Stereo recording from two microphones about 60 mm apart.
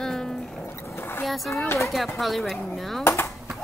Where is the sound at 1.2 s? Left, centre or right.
Centre.